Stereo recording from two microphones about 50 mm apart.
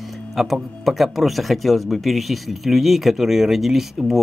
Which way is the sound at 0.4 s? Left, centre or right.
Centre.